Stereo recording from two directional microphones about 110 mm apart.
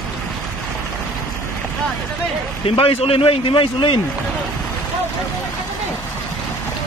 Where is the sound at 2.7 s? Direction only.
55° left (ahead or behind).